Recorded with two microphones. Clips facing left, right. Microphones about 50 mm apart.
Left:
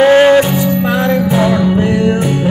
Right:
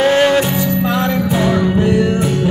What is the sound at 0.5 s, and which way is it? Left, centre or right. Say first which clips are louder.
Music: left 3 dB; centre.